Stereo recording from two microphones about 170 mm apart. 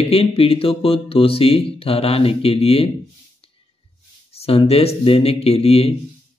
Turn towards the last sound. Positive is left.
turn(degrees=35)  # may be behind; listen again after turning